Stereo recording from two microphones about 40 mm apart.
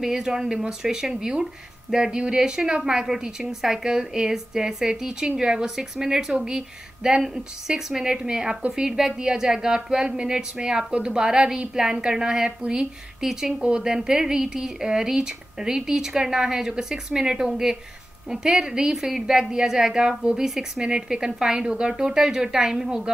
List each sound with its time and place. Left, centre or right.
0.0 s a woman's voice: centre